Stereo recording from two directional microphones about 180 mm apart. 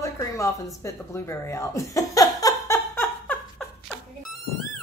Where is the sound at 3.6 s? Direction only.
Centre (ahead or behind).